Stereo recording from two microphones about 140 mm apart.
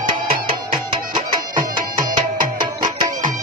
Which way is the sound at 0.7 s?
35° right (ahead or behind).